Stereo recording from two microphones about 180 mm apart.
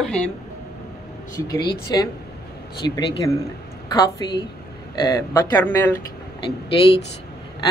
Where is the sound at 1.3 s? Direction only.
20° left (ahead or behind).